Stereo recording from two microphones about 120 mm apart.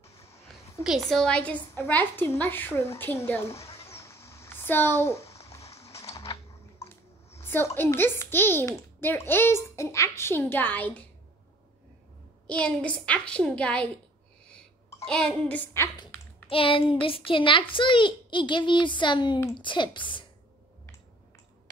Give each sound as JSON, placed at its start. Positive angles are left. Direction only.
{"t": 0.8, "sound": "a woman's voice", "side_deg": 0}
{"t": 3.5, "sound": "a sound", "side_deg": 55}
{"t": 3.9, "sound": "a sound", "side_deg": 25}
{"t": 6.3, "sound": "typing", "side_deg": 40}
{"t": 7.4, "sound": "a child's voice", "side_deg": 15}
{"t": 12.4, "sound": "a woman's voice", "side_deg": 10}
{"t": 15.0, "sound": "a woman's voice", "side_deg": 10}
{"t": 16.4, "sound": "a child's voice", "side_deg": 50}